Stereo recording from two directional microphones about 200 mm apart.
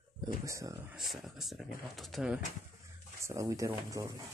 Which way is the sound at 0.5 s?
15° right (ahead or behind).